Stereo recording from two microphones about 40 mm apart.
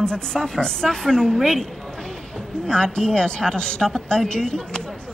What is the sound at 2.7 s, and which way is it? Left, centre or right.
A woman's voice, centre.